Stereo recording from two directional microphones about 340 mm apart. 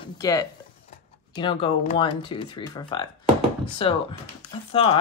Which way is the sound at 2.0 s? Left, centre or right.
Centre.